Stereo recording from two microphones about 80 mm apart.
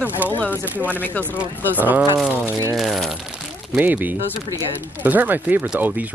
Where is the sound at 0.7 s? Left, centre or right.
Right.